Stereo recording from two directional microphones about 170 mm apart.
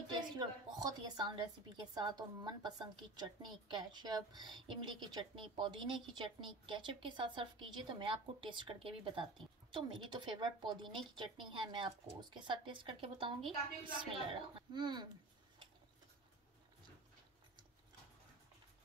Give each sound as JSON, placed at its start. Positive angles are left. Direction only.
{"t": 0.4, "sound": "a woman's voice", "side_deg": -25}